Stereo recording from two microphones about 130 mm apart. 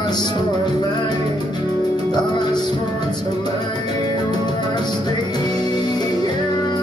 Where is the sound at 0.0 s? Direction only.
35° left (ahead or behind).